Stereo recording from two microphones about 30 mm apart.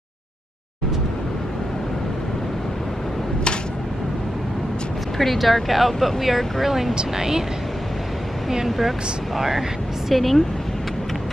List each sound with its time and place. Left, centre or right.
5.1 s speech: centre
7.0 s speech: right
8.6 s speech: centre
10.1 s speech: centre